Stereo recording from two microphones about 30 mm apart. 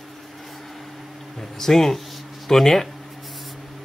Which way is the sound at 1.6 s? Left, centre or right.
Centre.